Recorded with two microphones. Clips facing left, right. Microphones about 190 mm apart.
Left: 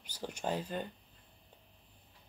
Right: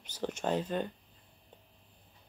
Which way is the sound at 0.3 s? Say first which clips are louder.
Right 4 dB; 10° left (ahead or behind).